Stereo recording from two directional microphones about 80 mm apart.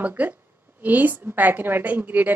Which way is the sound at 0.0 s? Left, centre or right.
Right.